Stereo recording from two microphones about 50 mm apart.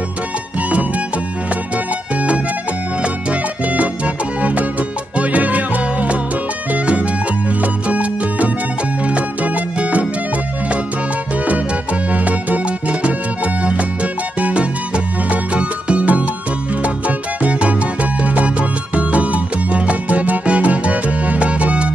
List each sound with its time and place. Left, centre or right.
0.7 s music: right
3.0 s music: right
12.1 s music: right
17.4 s music: right